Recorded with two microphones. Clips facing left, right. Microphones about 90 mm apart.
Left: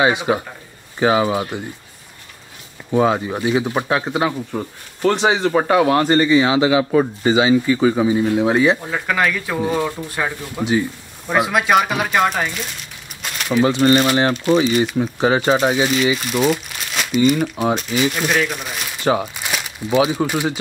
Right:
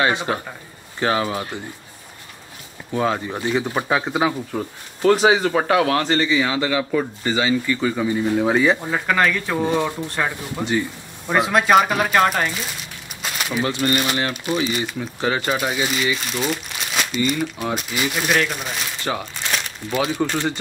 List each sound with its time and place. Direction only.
0.0 s speech: 10° left (ahead or behind)
2.9 s speech: 15° left (ahead or behind)
8.2 s speech: centre (ahead or behind)
13.2 s a sound: centre (ahead or behind)
13.7 s speech: 30° left (ahead or behind)
15.9 s speech: centre (ahead or behind)
19.3 s crumpling: 10° left (ahead or behind)
19.9 s speech: 15° left (ahead or behind)